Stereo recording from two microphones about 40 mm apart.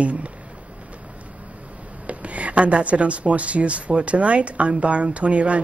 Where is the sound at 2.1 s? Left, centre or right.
Right.